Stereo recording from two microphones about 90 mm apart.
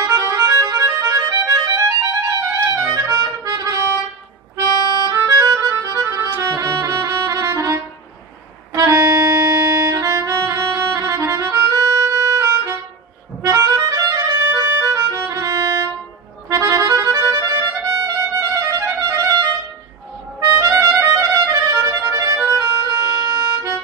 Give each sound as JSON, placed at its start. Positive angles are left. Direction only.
{"t": 0.0, "sound": "music", "side_deg": -35}
{"t": 5.1, "sound": "music", "side_deg": -35}
{"t": 5.9, "sound": "accordion", "side_deg": -40}
{"t": 6.4, "sound": "music", "side_deg": -35}
{"t": 13.5, "sound": "harmonica", "side_deg": -35}
{"t": 16.4, "sound": "music", "side_deg": -35}
{"t": 20.3, "sound": "music", "side_deg": -40}
{"t": 22.5, "sound": "harmonica", "side_deg": -40}